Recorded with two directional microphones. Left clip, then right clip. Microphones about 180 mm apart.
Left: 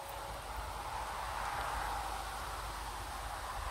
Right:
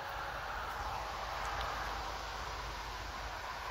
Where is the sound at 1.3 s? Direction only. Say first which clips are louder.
Left 1 dB; 55° left (ahead or behind).